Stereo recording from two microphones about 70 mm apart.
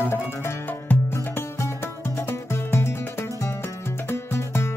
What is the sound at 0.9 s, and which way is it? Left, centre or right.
Music, left.